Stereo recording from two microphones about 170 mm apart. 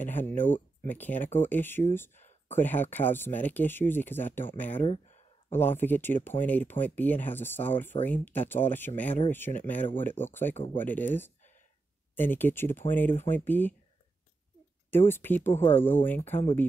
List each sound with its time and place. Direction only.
0.0 s speech: 10° left (ahead or behind)
2.1 s a sound: 40° left (ahead or behind)
2.5 s speech: 10° left (ahead or behind)
4.8 s speech: 40° left (ahead or behind)
5.5 s speech: 10° left (ahead or behind)
10.5 s speech: 30° left (ahead or behind)
10.8 s speech: 10° left (ahead or behind)
14.9 s speech: 10° left (ahead or behind)